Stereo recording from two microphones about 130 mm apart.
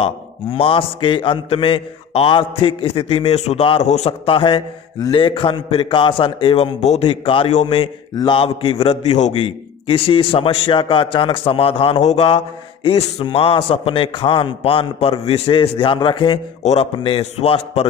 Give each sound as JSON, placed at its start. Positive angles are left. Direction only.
{"t": 0.0, "sound": "a man's voice", "side_deg": 45}
{"t": 3.8, "sound": "a man's voice", "side_deg": 60}
{"t": 4.3, "sound": "a man's voice", "side_deg": 45}
{"t": 9.8, "sound": "a man's voice", "side_deg": 45}
{"t": 12.8, "sound": "a man's voice", "side_deg": 45}
{"t": 16.6, "sound": "a man's voice", "side_deg": 50}